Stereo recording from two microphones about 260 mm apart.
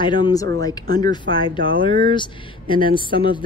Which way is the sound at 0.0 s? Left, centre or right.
Centre.